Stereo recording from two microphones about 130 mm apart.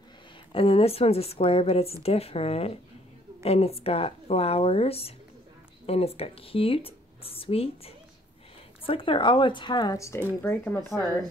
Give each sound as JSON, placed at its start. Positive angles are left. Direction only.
{"t": 0.5, "sound": "speech", "side_deg": 45}